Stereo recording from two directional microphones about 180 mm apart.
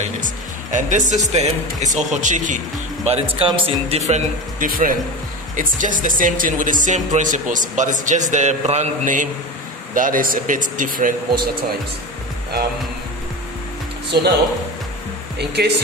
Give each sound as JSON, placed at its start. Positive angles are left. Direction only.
{"t": 0.0, "sound": "speech", "side_deg": -45}
{"t": 3.1, "sound": "a man's voice", "side_deg": -30}
{"t": 15.3, "sound": "speech", "side_deg": -65}